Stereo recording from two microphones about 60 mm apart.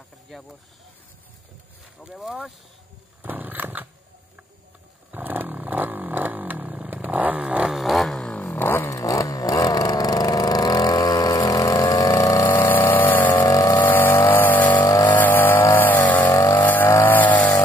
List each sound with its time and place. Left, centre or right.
3.2 s a sound: right
5.1 s vehicle: right
7.7 s a sound: centre
8.3 s vehicle: left
8.9 s vehicle: left
12.4 s pump: left
13.5 s vehicle: left
13.7 s vehicle: left
17.0 s a sound: left